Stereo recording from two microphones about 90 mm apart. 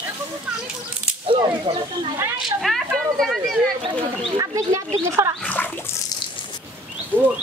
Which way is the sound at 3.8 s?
80° right.